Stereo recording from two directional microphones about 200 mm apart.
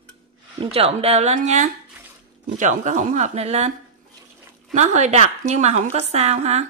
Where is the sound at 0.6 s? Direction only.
30° right (ahead or behind).